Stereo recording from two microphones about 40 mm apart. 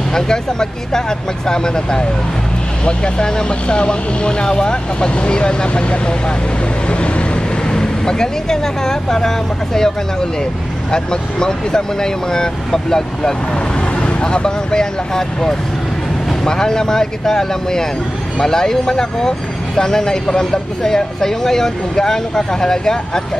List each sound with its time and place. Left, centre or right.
0.1 s speech: centre
6.9 s vehicle: left
7.7 s speech: centre
10.9 s speech: centre